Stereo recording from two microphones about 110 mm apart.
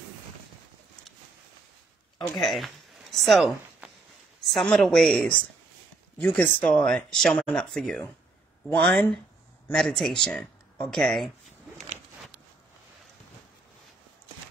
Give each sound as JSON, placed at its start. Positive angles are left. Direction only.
{"t": 2.1, "sound": "a woman's voice", "side_deg": 0}
{"t": 8.6, "sound": "speech", "side_deg": 15}
{"t": 9.7, "sound": "speech", "side_deg": 5}